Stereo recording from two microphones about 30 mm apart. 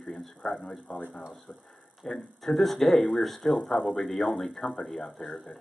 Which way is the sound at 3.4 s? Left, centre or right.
Centre.